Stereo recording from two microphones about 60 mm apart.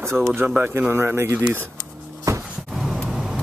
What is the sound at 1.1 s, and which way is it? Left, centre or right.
Speech, right.